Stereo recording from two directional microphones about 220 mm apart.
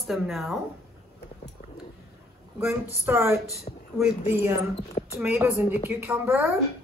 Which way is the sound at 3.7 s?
25° left (ahead or behind).